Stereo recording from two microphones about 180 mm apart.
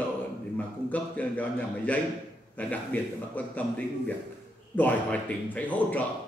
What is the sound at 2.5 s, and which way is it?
A man's voice, 10° left (ahead or behind).